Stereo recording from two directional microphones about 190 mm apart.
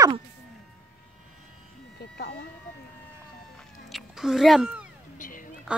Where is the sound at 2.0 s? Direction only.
60° left (ahead or behind).